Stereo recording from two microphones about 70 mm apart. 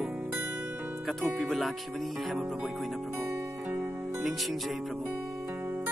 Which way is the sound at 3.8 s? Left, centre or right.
Centre.